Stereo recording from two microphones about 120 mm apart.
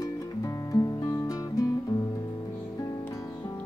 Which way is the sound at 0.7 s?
30° left (ahead or behind).